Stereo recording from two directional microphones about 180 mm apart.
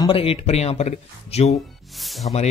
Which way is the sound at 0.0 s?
30° left (ahead or behind).